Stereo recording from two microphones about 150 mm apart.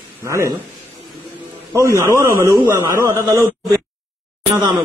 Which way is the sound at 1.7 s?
20° right (ahead or behind).